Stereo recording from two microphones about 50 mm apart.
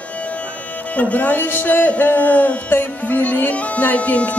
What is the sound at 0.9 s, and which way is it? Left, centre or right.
Speech, left.